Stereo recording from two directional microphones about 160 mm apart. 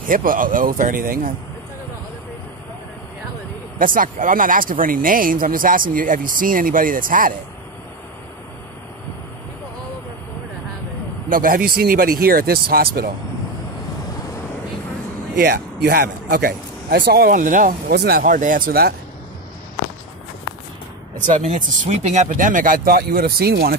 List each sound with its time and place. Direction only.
0.0 s speech: 60° right (ahead or behind)
3.7 s speech: 60° right (ahead or behind)
11.2 s speech: 60° right (ahead or behind)
15.3 s speech: 80° right
18.2 s speech: 55° right (ahead or behind); by 18.9 s 70° right (ahead or behind)
21.3 s speech: 50° right (ahead or behind); by 23.8 s 80° right